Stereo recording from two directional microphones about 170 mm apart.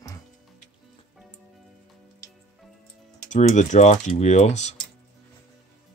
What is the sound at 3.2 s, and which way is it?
Speech, 45° left (ahead or behind).